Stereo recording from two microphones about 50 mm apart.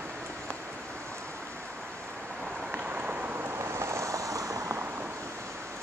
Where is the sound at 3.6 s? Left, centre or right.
Right.